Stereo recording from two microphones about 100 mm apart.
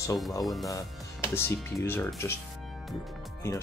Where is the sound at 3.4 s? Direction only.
25° left (ahead or behind).